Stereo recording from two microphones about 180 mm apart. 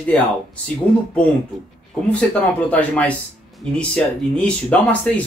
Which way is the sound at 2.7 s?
10° left (ahead or behind).